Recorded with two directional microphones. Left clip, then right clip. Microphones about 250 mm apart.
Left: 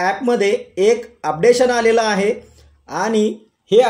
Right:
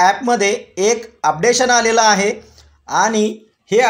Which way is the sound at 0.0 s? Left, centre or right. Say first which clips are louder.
Right 3 dB; right.